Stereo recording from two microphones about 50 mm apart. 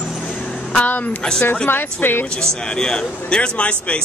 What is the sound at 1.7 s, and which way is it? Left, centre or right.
Speech, left.